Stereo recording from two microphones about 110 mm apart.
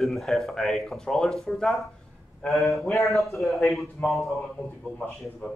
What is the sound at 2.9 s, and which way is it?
A man's voice, centre (ahead or behind).